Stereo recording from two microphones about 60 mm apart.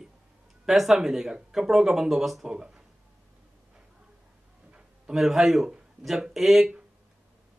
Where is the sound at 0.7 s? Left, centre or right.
Centre.